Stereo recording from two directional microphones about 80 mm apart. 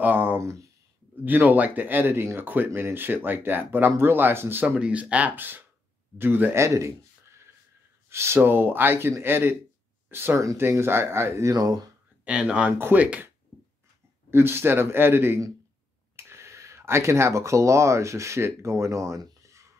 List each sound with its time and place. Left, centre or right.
0.0 s a sound: right
0.4 s speech: right
1.2 s speech: right
4.7 s speech: centre
6.6 s a sound: right
8.1 s speech: right
11.5 s speech: right
12.3 s speech: centre
12.7 s speech: right
13.0 s speech: centre
14.3 s speech: right